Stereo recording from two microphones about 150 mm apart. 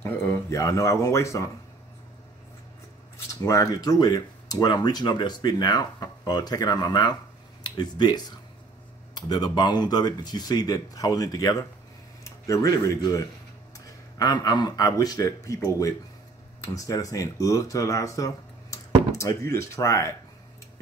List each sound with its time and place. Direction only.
0.0 s speech: 20° left (ahead or behind)
3.3 s speech: 20° left (ahead or behind)